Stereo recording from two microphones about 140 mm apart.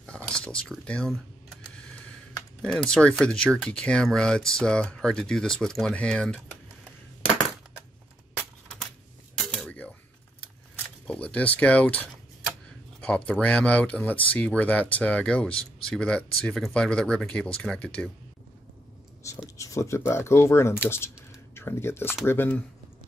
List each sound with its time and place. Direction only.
0.0 s a sound: 5° left (ahead or behind)
2.6 s speech: 5° left (ahead or behind)
9.5 s a sound: 10° left (ahead or behind)
11.1 s speech: 10° left (ahead or behind)
19.2 s writing: 20° left (ahead or behind)
20.1 s speech: 20° left (ahead or behind)